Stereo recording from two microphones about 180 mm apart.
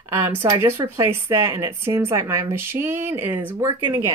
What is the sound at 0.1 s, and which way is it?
Speech, 15° right (ahead or behind).